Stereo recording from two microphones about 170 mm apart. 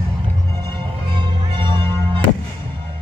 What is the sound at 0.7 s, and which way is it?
Music, 30° right (ahead or behind).